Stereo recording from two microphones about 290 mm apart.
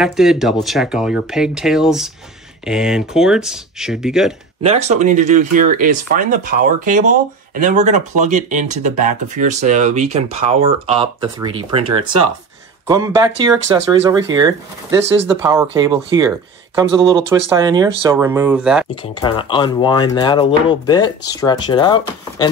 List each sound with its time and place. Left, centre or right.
0.0 s speech: centre
4.6 s speech: right
12.8 s speech: centre
19.2 s speech: centre